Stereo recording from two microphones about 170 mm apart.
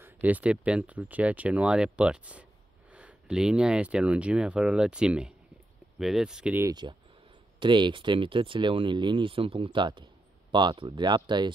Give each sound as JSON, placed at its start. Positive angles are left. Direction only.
{"t": 0.0, "sound": "speech", "side_deg": -10}
{"t": 6.7, "sound": "speech", "side_deg": -25}